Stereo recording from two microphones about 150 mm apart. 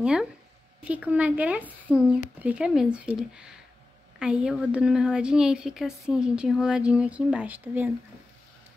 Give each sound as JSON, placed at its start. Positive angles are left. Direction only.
{"t": 0.0, "sound": "a woman's voice", "side_deg": -5}